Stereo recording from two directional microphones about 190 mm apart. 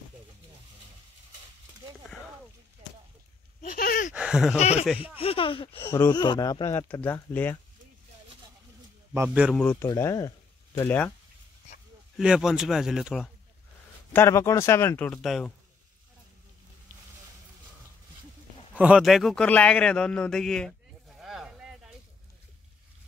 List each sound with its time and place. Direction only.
3.6 s a sound: 50° left (ahead or behind)
4.1 s a sound: 5° right (ahead or behind)
4.6 s speech: 35° left (ahead or behind)
5.9 s speech: 15° left (ahead or behind)
9.1 s a man's voice: 10° right (ahead or behind)
9.6 s speech: 10° left (ahead or behind)
12.2 s speech: 5° right (ahead or behind)
14.1 s speech: 15° left (ahead or behind)
18.8 s a man's voice: 5° right (ahead or behind)